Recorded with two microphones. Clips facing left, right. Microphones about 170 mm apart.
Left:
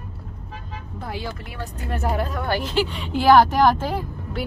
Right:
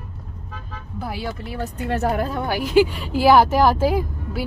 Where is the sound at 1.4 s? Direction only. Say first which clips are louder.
Right 6 dB; 35° right (ahead or behind).